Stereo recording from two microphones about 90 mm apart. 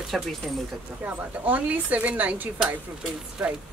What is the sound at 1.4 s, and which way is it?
A woman's voice, 15° right (ahead or behind).